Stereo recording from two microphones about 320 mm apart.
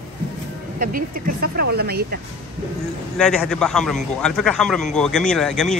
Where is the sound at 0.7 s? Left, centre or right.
Right.